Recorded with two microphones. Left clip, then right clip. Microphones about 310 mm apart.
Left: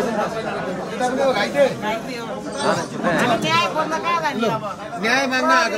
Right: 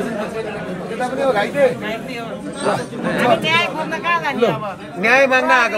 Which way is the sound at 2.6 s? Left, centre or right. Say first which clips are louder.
Even; left.